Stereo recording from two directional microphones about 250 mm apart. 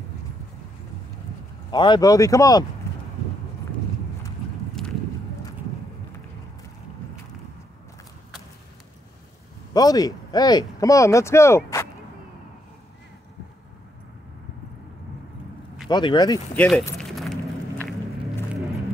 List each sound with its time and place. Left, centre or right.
1.7 s speech: centre
9.8 s speech: centre
15.9 s speech: centre
16.5 s keys jangling: centre